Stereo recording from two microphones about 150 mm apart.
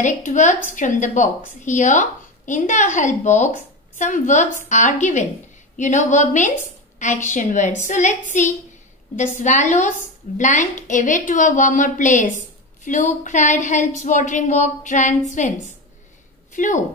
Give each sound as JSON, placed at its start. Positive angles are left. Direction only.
{"t": 0.0, "sound": "a woman's voice", "side_deg": 55}
{"t": 16.5, "sound": "a woman's voice", "side_deg": 55}